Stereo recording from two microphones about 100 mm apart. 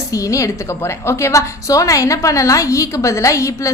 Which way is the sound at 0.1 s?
30° left (ahead or behind).